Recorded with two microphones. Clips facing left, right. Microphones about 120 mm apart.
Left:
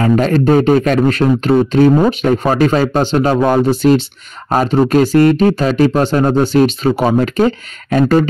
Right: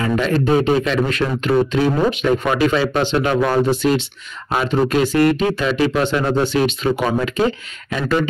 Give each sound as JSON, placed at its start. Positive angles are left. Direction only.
{"t": 0.0, "sound": "speech", "side_deg": 45}